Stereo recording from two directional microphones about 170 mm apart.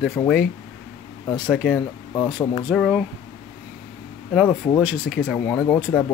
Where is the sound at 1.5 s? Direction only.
5° left (ahead or behind).